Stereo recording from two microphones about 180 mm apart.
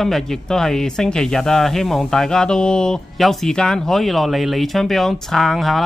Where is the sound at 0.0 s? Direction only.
Centre (ahead or behind).